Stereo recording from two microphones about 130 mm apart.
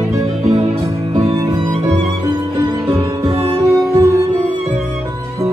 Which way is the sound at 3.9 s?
25° right (ahead or behind).